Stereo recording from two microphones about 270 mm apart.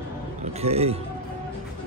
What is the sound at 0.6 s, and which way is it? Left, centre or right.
Speech, right.